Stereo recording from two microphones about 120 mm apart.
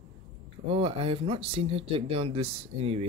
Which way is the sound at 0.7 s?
50° right (ahead or behind).